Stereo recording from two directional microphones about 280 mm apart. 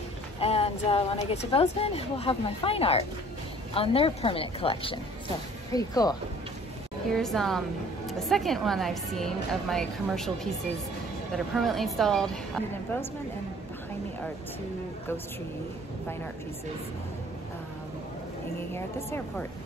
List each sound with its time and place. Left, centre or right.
0.4 s speech: left
7.1 s a woman's voice: centre
18.7 s speech: centre